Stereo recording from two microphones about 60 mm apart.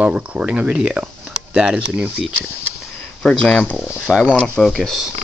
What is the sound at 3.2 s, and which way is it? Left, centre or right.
Speech, centre.